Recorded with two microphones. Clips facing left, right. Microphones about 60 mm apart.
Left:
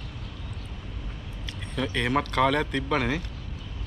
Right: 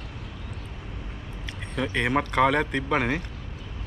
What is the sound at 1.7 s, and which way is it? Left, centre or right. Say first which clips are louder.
Speech: right 1 dB; centre.